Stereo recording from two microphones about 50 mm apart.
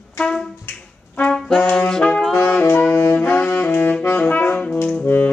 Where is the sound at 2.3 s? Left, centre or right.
Left.